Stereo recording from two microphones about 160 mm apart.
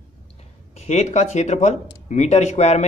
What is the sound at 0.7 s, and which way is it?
Speech, 45° left (ahead or behind).